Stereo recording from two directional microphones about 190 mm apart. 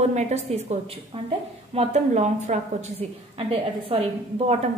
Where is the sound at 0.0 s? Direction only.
35° right (ahead or behind).